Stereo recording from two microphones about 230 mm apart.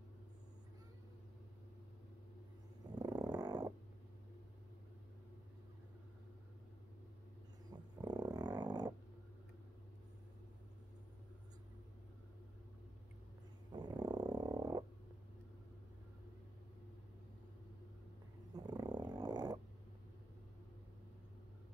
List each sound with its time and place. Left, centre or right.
3.0 s a sound: centre
7.7 s dog: centre
13.7 s frog: centre
18.5 s dog: centre